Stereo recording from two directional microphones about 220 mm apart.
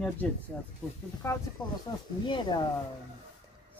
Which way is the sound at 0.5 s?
5° left (ahead or behind).